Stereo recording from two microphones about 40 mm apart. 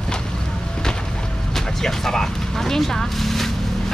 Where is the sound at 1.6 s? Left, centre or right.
Centre.